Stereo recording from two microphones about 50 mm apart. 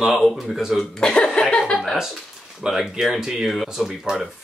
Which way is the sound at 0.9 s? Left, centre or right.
Centre.